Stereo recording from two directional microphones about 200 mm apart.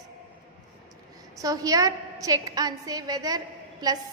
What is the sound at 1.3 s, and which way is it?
A woman's voice, 15° right (ahead or behind).